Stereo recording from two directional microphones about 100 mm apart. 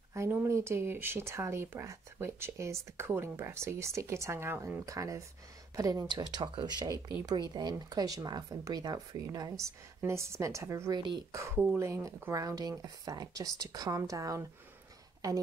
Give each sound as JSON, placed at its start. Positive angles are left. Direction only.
{"t": 0.1, "sound": "speech", "side_deg": -25}
{"t": 4.8, "sound": "speech", "side_deg": -30}
{"t": 11.0, "sound": "speech", "side_deg": -50}
{"t": 11.3, "sound": "speech", "side_deg": -30}